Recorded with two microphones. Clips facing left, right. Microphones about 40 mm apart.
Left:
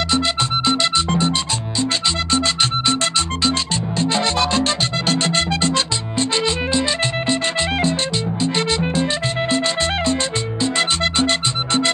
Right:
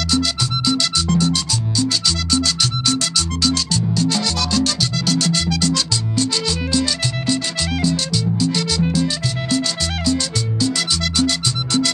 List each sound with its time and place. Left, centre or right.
0.1 s music: left